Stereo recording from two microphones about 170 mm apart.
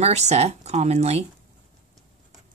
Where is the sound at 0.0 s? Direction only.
40° right (ahead or behind).